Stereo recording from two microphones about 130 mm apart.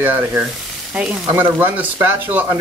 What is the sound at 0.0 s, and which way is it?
Speech, 15° right (ahead or behind).